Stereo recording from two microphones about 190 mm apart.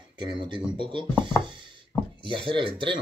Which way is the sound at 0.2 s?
25° right (ahead or behind).